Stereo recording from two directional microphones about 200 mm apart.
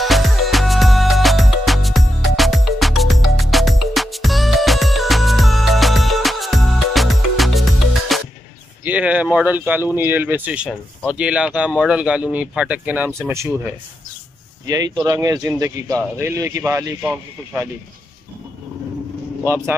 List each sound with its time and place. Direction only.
0.0 s music: centre (ahead or behind)
8.8 s speech: 5° right (ahead or behind)
15.0 s speech: 15° right (ahead or behind)